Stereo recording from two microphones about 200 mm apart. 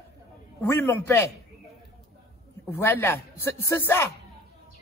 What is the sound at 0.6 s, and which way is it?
Speech, 15° left (ahead or behind).